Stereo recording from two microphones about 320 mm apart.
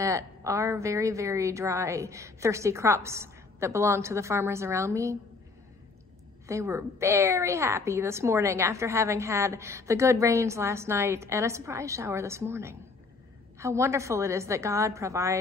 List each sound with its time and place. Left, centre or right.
0.0 s a woman's voice: centre
6.4 s a woman's voice: centre